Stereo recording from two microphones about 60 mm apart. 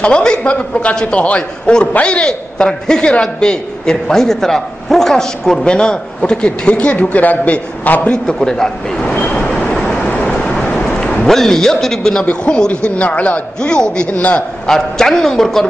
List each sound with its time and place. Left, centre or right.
0.0 s a man's voice: centre
8.1 s a man's voice: centre
9.8 s vehicle: centre
10.0 s a sound: left
11.2 s a man's voice: centre; by 14.4 s left
14.7 s a man's voice: centre